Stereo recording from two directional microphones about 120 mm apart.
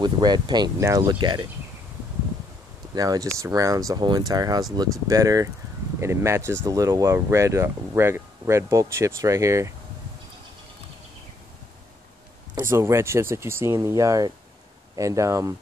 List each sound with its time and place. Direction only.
0.0 s speech: 35° right (ahead or behind)
2.9 s speech: 30° right (ahead or behind)
12.6 s speech: 20° right (ahead or behind)